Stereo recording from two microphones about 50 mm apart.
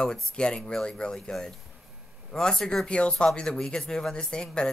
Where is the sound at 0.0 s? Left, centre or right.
Centre.